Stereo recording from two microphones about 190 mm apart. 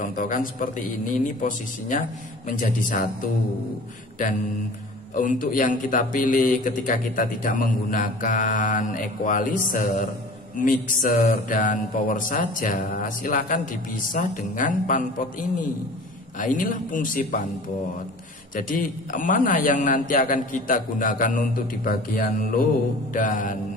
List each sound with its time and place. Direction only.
0.0 s speech: 45° left (ahead or behind)
18.5 s speech: 45° left (ahead or behind)